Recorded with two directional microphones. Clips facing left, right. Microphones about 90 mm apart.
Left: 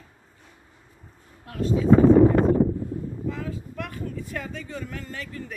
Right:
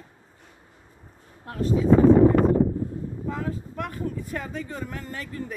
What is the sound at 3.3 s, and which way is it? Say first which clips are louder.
A woman's voice: right 5 dB; 35° right (ahead or behind).